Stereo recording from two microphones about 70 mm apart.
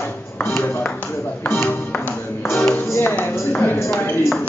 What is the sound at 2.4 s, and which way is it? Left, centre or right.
Music, left.